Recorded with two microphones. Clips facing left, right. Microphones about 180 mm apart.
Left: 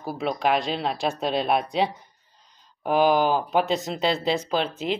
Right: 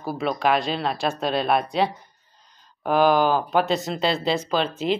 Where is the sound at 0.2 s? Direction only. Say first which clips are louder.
Right 1 dB; 20° left (ahead or behind).